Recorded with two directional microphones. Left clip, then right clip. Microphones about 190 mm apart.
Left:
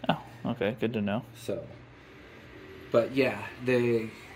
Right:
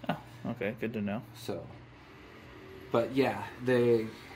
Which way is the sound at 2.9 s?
10° left (ahead or behind).